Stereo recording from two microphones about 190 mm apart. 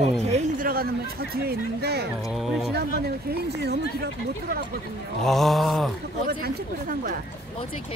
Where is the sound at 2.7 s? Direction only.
55° right (ahead or behind).